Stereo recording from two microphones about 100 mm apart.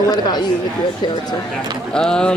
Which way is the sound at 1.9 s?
5° left (ahead or behind).